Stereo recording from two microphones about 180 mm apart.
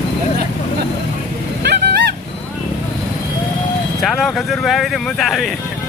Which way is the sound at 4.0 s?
Centre (ahead or behind).